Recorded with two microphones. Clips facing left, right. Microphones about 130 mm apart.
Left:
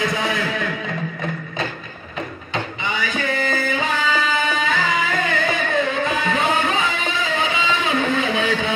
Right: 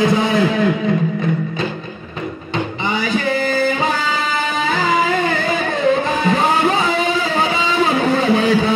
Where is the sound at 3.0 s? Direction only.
35° right (ahead or behind).